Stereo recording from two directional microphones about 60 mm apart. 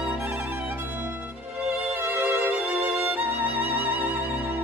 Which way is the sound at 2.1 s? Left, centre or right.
Right.